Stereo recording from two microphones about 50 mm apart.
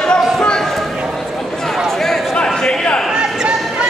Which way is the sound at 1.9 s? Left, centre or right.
Centre.